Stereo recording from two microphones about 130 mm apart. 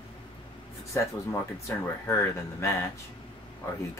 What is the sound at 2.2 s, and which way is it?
Speech, 20° left (ahead or behind).